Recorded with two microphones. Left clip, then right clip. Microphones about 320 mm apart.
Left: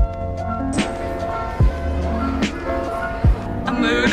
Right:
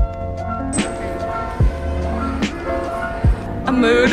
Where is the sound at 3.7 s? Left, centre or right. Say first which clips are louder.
Right 5 dB; centre.